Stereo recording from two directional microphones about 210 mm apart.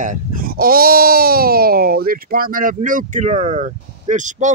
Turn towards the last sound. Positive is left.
turn(degrees=-35)  # may be behind; listen again after turning